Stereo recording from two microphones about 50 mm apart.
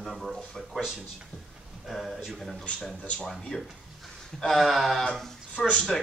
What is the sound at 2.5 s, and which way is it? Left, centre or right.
Speech, centre.